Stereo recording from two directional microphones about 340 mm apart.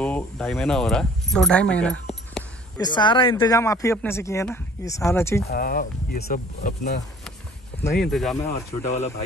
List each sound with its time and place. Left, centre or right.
0.0 s speech: centre
5.5 s speech: left
8.0 s speech: centre